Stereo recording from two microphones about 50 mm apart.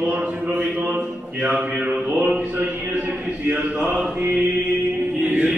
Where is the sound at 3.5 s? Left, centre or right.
Right.